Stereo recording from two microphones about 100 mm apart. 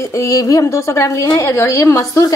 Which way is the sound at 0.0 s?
30° left (ahead or behind).